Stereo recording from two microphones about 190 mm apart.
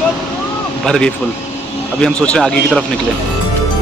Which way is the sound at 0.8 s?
5° left (ahead or behind).